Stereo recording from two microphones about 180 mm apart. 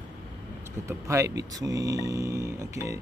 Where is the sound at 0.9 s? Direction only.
15° right (ahead or behind).